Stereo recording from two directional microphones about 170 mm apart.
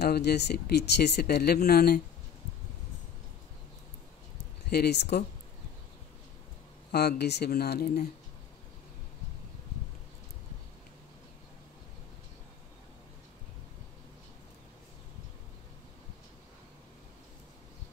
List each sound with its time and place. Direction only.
0.0 s speech: 75° left (ahead or behind)
4.6 s speech: 70° left (ahead or behind)
6.9 s speech: 75° left (ahead or behind)